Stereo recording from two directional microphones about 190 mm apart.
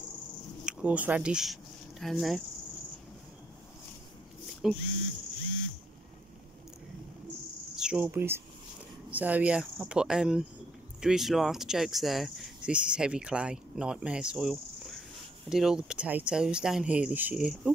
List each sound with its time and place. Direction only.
0.7 s speech: 5° right (ahead or behind)
4.5 s dog: centre (ahead or behind)
7.7 s speech: 5° right (ahead or behind)